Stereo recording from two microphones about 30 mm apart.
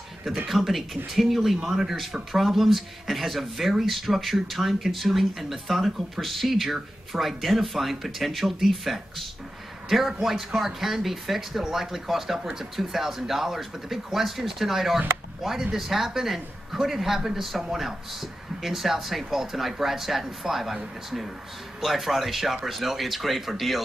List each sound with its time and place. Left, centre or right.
0.5 s speech: centre
1.6 s a man's voice: centre